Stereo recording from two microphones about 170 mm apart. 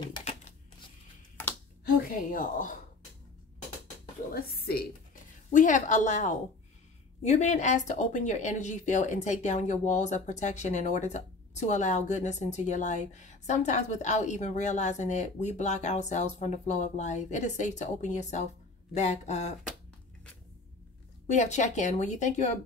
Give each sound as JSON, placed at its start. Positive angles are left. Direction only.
{"t": 1.9, "sound": "a woman's voice", "side_deg": 55}
{"t": 4.3, "sound": "a woman's voice", "side_deg": 65}
{"t": 5.5, "sound": "a woman's voice", "side_deg": 50}
{"t": 21.3, "sound": "a woman's voice", "side_deg": 45}